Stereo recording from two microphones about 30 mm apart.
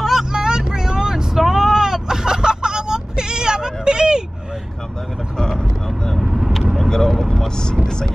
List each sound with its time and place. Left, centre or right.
0.0 s vehicle: centre
0.3 s vehicle: right
1.1 s vehicle: centre; by 4.2 s right
6.1 s vehicle: centre
6.9 s vehicle: centre
7.5 s vehicle: left